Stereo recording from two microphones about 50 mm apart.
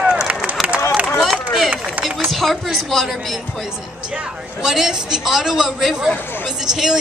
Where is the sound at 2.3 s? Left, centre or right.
Centre.